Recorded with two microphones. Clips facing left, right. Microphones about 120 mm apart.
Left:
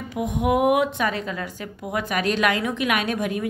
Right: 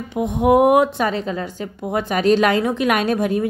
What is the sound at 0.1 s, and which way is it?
A woman's voice, 30° right (ahead or behind).